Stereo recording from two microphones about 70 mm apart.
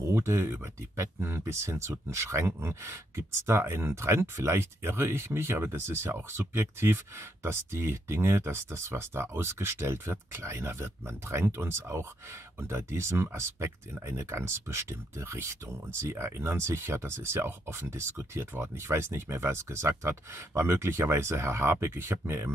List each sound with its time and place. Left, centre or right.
0.0 s speech: right